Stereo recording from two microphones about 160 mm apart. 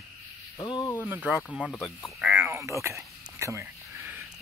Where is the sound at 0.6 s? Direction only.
30° left (ahead or behind).